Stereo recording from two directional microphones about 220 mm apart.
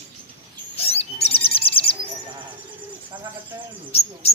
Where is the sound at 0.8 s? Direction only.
25° left (ahead or behind).